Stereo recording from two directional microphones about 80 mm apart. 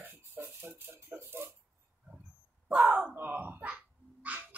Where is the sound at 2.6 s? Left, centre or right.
Centre.